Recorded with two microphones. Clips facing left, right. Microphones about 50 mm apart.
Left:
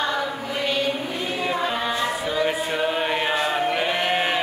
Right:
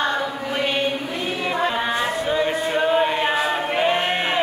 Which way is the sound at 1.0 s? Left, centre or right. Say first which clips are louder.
Right 2 dB; centre.